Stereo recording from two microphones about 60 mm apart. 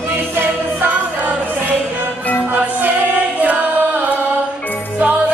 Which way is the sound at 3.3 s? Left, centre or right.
Right.